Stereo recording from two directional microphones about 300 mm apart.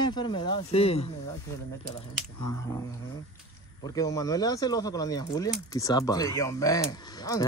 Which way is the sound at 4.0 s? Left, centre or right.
Centre.